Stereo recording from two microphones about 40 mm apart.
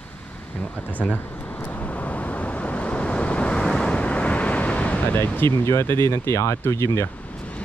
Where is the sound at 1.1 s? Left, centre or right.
Left.